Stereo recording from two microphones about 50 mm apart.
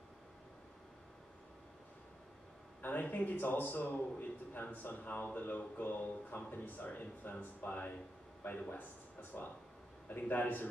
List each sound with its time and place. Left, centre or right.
2.8 s a man's voice: left